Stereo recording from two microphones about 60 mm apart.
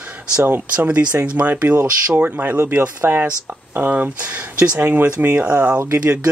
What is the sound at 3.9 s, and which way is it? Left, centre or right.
Speech, right.